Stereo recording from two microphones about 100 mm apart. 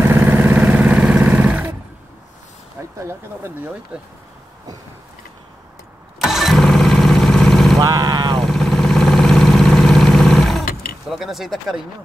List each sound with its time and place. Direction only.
0.0 s vehicle: 20° right (ahead or behind)
3.1 s speech: 25° right (ahead or behind)
6.1 s engine starting: centre (ahead or behind)
7.8 s vehicle: 40° right (ahead or behind)
8.4 s vehicle: 5° left (ahead or behind)
11.1 s speech: centre (ahead or behind)